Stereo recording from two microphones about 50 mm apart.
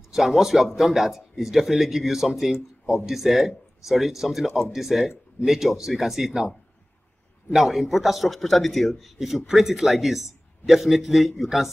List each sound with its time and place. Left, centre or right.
0.1 s a man's voice: centre
7.5 s speech: centre